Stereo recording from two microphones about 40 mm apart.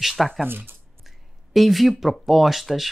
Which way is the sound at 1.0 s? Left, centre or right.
Centre.